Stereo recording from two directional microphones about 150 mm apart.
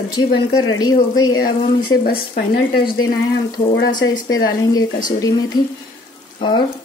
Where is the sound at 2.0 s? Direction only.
80° left.